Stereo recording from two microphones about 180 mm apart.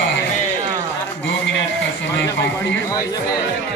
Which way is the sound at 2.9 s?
20° left (ahead or behind).